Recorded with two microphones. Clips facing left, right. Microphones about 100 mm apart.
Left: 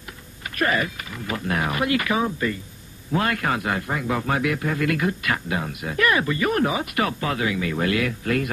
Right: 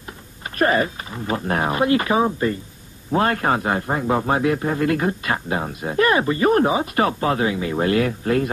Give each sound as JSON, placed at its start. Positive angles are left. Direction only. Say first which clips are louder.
{"t": 0.6, "sound": "a man's voice", "louder": "right 5 dB", "side_deg": -35}